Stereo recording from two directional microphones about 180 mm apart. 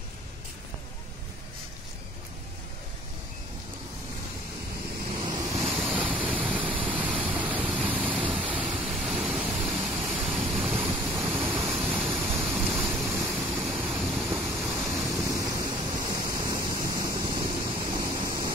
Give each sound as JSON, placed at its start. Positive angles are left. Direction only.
{"t": 5.0, "sound": "waves", "side_deg": -30}
{"t": 5.7, "sound": "waves", "side_deg": -5}
{"t": 11.0, "sound": "waterfall", "side_deg": -15}
{"t": 13.3, "sound": "waves", "side_deg": -10}
{"t": 17.9, "sound": "a sound", "side_deg": -20}